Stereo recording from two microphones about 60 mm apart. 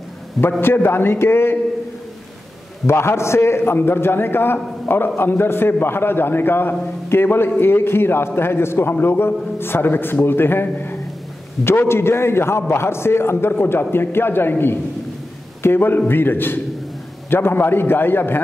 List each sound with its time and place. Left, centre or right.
0.4 s a man's voice: centre
0.8 s a man's voice: left
2.9 s a man's voice: left